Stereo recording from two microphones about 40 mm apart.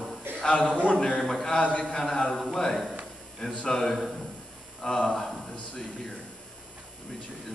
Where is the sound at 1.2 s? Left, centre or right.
Centre.